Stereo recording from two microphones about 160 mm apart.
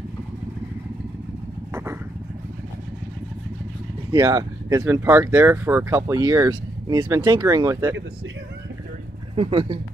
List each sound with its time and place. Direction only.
4.1 s speech: 25° right (ahead or behind)
9.3 s speech: 35° right (ahead or behind)